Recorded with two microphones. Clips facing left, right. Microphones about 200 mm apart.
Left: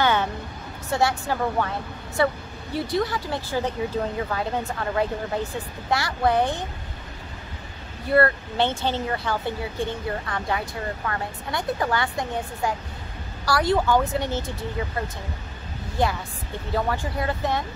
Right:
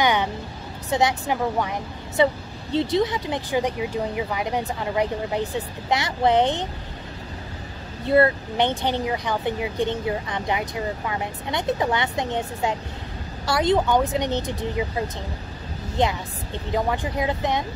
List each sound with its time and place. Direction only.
0.0 s vehicle: 15° right (ahead or behind)
0.8 s a woman's voice: 20° right (ahead or behind)
8.1 s a woman's voice: 20° right (ahead or behind)